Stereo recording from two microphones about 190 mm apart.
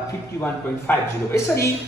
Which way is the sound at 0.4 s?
10° left (ahead or behind).